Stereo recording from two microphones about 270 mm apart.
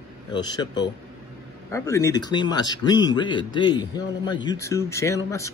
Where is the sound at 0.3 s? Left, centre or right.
Centre.